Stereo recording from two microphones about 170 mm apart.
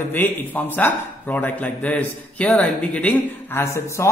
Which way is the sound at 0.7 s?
10° left (ahead or behind).